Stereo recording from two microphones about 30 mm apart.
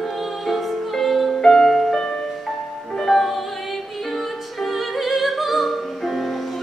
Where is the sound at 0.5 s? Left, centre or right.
Centre.